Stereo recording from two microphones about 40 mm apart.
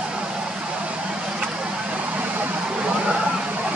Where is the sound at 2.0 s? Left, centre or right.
Right.